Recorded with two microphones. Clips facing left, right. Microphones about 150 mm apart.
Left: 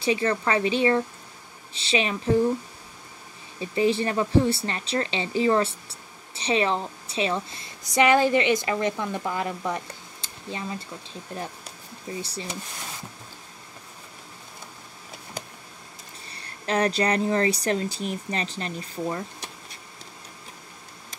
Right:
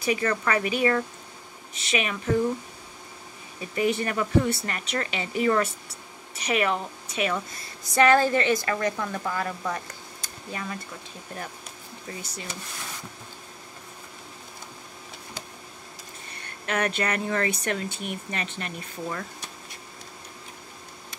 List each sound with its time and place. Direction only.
0.0 s a woman's voice: 25° left (ahead or behind)
3.5 s a woman's voice: 30° left (ahead or behind)
16.3 s speech: 30° left (ahead or behind)